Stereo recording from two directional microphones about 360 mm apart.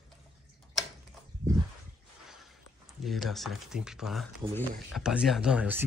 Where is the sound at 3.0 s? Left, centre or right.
Centre.